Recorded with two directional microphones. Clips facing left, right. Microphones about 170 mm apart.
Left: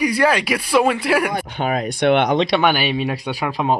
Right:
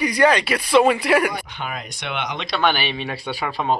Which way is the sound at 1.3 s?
50° left (ahead or behind).